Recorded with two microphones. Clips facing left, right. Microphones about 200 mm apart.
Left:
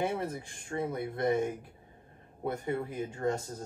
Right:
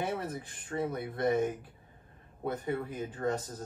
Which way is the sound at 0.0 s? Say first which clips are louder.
Left 2 dB; 25° left (ahead or behind).